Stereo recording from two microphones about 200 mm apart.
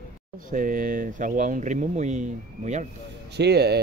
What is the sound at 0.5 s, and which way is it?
Speech, 40° right (ahead or behind).